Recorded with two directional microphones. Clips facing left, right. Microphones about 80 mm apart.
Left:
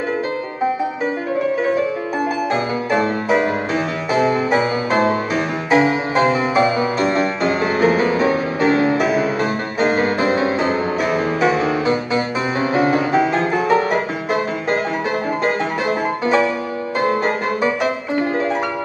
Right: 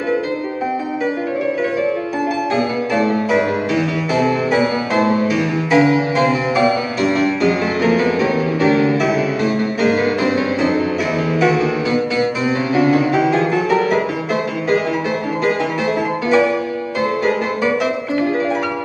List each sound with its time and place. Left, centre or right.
2.5 s music: left
17.8 s music: left